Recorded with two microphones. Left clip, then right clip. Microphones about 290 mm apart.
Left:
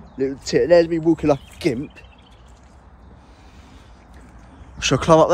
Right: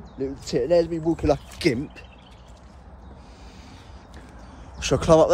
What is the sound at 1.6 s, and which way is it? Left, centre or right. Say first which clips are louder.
Speech: left 1 dB; centre.